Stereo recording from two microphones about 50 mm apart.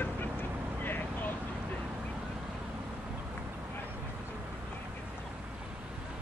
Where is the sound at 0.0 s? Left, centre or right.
Left.